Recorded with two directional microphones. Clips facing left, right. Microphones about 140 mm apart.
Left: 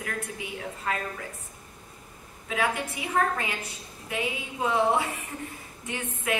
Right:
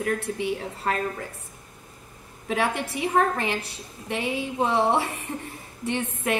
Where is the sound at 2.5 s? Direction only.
30° right (ahead or behind).